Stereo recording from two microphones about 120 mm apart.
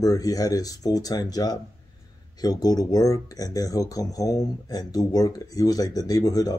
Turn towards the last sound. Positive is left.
turn(degrees=30)  # may be behind; listen again after turning